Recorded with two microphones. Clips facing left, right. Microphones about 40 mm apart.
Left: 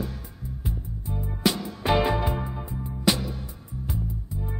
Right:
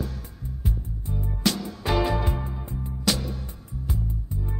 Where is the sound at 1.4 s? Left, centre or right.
Centre.